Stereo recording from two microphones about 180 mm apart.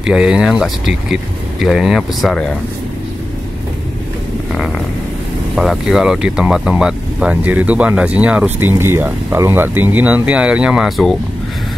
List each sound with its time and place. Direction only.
0.0 s speech: 5° right (ahead or behind)
5.6 s speech: centre (ahead or behind)